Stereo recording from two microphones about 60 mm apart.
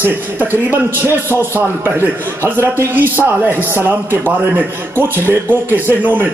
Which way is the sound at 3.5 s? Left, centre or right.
Right.